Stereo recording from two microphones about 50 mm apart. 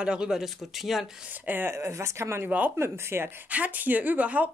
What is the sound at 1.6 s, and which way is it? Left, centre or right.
Speech, right.